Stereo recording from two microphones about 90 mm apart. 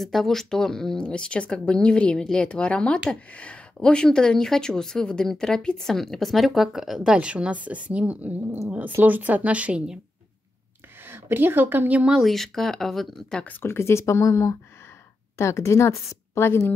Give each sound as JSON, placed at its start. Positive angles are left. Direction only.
{"t": 0.0, "sound": "speech", "side_deg": 0}
{"t": 11.1, "sound": "speech", "side_deg": -25}
{"t": 12.1, "sound": "speech", "side_deg": 0}
{"t": 13.5, "sound": "a woman's voice", "side_deg": 25}